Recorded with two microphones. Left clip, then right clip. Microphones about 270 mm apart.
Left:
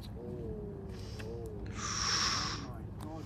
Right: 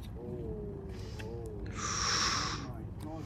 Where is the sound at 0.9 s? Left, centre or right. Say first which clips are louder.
Even; centre.